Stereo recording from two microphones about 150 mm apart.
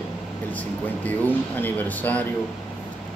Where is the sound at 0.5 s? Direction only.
10° left (ahead or behind).